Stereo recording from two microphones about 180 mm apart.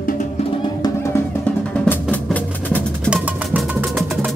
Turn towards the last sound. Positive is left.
turn(degrees=-5)  # may be behind; listen again after turning